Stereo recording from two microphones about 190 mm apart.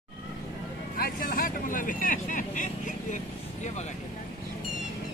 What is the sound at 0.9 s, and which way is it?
Vehicle, 50° left (ahead or behind).